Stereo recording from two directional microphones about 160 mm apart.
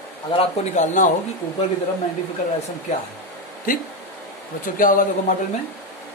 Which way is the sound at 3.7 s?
60° left (ahead or behind).